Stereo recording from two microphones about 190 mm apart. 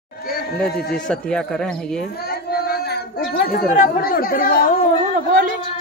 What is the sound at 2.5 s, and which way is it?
Speech, 55° left (ahead or behind).